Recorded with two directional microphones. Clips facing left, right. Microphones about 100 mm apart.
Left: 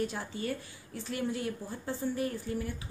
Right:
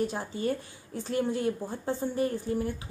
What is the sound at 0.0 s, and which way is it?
A woman's voice, 25° right (ahead or behind).